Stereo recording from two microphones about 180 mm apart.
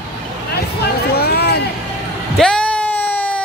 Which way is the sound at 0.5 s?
65° left (ahead or behind).